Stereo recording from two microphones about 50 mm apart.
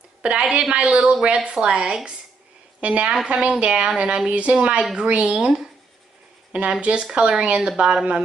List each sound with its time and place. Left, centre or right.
0.2 s a woman's voice: right
6.5 s a woman's voice: right